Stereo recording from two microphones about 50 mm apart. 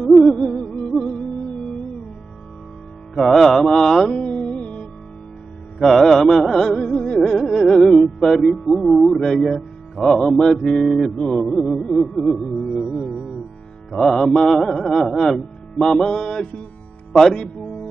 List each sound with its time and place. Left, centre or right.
0.0 s music: centre
0.4 s music: centre
3.2 s music: centre
4.6 s music: left
5.8 s a sound: centre
6.7 s music: centre
13.9 s a sound: centre
15.0 s speech: centre
17.1 s music: centre